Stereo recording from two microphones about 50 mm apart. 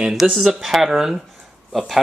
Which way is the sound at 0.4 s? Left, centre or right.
Centre.